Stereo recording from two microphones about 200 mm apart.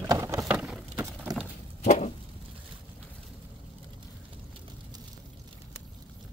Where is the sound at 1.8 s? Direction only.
35° left (ahead or behind).